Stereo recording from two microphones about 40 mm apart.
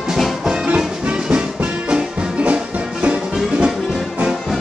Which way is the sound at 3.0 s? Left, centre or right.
Right.